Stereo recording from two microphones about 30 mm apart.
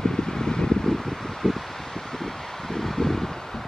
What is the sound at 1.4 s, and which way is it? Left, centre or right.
Rustling leaves, centre.